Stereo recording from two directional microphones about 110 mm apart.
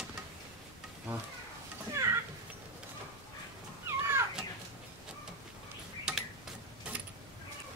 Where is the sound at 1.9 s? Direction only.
25° right (ahead or behind).